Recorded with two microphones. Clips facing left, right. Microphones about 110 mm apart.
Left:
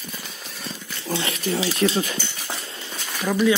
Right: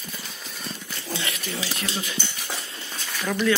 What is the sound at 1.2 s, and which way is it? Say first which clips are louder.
Speech: left 10 dB; 30° left (ahead or behind).